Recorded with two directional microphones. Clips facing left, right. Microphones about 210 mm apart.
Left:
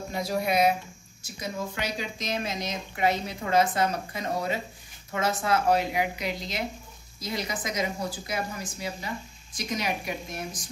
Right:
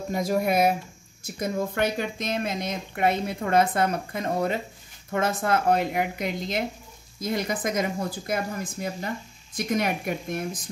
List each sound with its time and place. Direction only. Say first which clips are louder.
0.1 s speech: right 4 dB; 50° right (ahead or behind)